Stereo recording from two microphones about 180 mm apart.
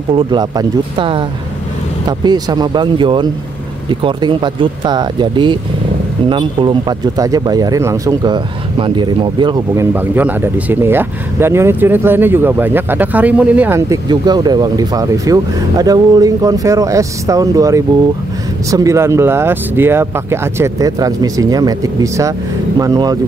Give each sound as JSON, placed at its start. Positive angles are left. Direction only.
{"t": 0.1, "sound": "speech", "side_deg": -25}
{"t": 9.9, "sound": "speech", "side_deg": -10}